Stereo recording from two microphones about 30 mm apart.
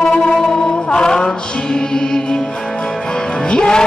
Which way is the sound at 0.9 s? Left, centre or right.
Left.